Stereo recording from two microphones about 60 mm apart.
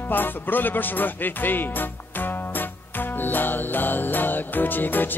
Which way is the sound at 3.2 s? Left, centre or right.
Left.